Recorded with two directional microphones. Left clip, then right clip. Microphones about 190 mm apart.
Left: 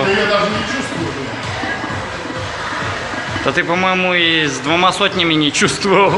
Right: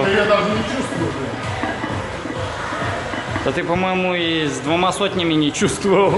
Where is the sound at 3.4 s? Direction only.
Centre (ahead or behind).